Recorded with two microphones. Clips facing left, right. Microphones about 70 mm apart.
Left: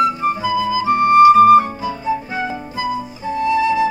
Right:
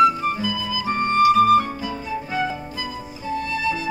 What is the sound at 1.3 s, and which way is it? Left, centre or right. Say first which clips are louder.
Flute: left 7 dB; left.